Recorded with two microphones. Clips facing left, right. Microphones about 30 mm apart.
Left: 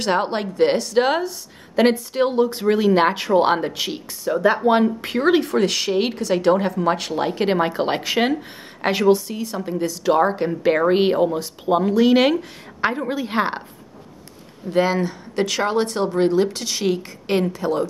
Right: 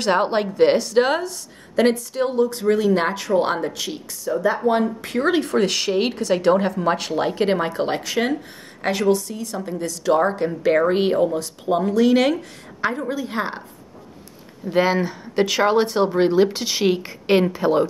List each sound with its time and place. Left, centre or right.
0.0 s a woman's voice: centre
2.0 s speech: left
4.3 s speech: left
4.6 s speech: left
5.1 s speech: centre
9.6 s speech: centre; by 13.7 s left
14.7 s speech: centre